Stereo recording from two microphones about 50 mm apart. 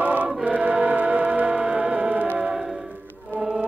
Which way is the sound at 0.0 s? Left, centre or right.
Right.